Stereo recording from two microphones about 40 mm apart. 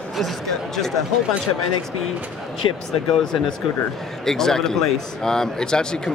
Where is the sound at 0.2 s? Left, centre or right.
Centre.